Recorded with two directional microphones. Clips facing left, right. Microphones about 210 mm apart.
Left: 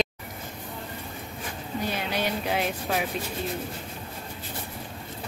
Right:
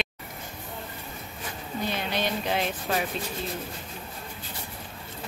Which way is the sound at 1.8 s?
10° left (ahead or behind).